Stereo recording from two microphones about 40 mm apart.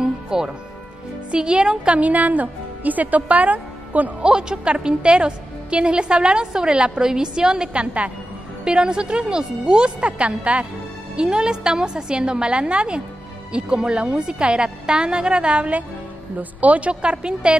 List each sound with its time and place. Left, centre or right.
0.0 s music: centre
1.3 s a woman's voice: right
2.0 s a woman's voice: right
4.2 s a woman's voice: right
7.7 s a woman's voice: right